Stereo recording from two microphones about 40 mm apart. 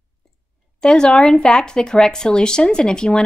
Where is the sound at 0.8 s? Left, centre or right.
Centre.